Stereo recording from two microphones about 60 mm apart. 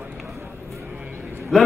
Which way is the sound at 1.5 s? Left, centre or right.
Centre.